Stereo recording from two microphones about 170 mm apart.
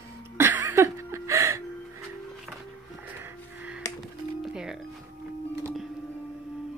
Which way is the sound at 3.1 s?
10° right (ahead or behind).